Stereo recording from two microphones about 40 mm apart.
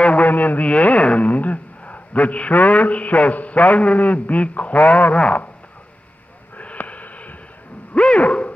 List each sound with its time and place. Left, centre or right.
0.0 s a sound: left
0.3 s a man's voice: left
6.6 s sniff: left
7.9 s owl: left